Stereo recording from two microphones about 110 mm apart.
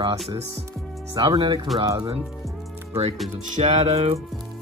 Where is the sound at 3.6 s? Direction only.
90° right; by 4.2 s 70° right (ahead or behind).